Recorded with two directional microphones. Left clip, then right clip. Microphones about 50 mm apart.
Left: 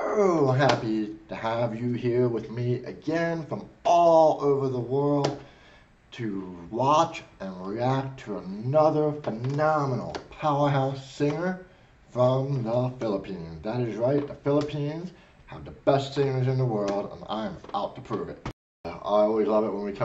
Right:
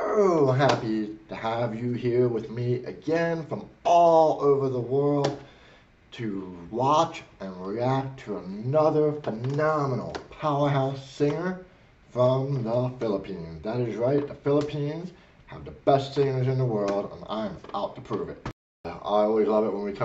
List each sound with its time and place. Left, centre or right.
0.0 s a man's voice: left
18.8 s speech: left